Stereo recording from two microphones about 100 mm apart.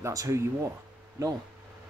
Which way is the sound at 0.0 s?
30° right (ahead or behind).